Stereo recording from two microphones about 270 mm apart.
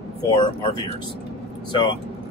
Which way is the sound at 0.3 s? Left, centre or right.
Centre.